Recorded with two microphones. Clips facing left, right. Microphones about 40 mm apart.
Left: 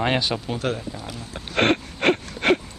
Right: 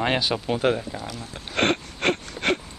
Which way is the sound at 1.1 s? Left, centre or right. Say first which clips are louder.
Left 1 dB; centre.